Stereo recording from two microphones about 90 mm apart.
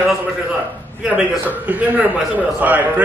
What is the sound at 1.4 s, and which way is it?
A man's voice, 20° right (ahead or behind).